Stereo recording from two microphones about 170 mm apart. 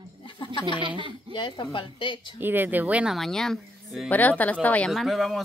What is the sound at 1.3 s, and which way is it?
A woman's voice, 30° left (ahead or behind).